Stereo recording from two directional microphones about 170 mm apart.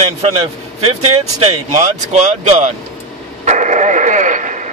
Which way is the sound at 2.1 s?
45° right (ahead or behind).